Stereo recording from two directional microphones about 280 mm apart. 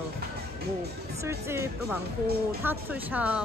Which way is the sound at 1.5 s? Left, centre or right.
Centre.